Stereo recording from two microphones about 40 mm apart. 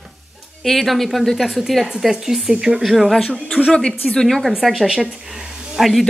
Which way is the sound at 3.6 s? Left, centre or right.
Left.